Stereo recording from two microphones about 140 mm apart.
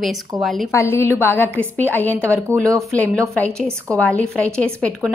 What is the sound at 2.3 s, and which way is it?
Speech, 20° right (ahead or behind).